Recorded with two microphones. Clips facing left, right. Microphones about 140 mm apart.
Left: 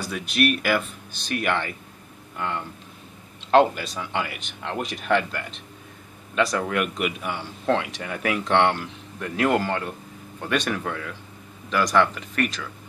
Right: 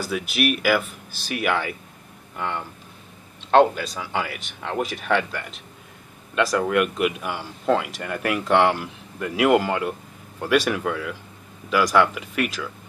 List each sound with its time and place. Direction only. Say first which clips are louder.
0.0 s speech: even; 5° right (ahead or behind)